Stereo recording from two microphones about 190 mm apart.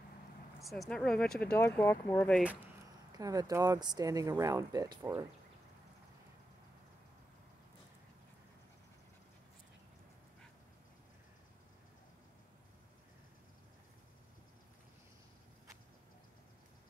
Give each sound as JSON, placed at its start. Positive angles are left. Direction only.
{"t": 0.6, "sound": "speech", "side_deg": 0}
{"t": 3.1, "sound": "speech", "side_deg": -20}